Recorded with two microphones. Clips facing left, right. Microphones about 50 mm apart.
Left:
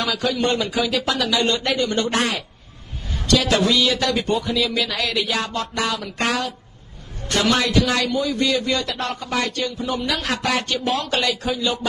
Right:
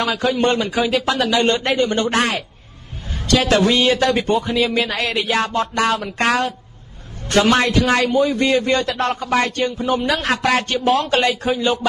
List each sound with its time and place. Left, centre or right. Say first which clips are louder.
0.0 s a man's voice: right 4 dB; right